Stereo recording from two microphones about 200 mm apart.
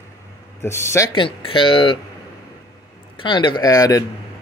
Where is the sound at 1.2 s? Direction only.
25° left (ahead or behind).